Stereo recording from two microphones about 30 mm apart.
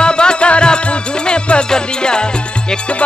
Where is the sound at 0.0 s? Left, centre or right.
Left.